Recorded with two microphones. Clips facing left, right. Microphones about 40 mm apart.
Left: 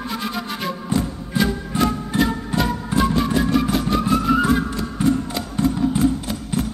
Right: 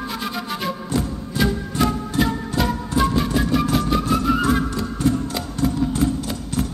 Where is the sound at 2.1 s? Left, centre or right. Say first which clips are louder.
Left 2 dB; left.